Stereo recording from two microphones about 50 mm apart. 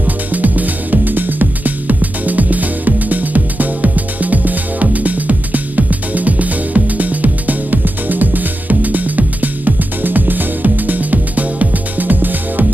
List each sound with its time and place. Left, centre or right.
0.0 s music: right